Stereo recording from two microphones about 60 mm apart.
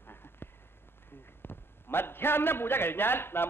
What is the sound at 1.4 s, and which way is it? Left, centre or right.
A man's voice, left.